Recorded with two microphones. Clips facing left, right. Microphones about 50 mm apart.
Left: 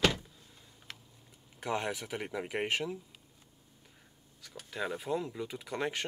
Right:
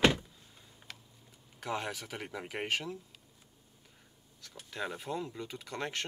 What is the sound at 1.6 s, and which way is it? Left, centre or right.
Speech, centre.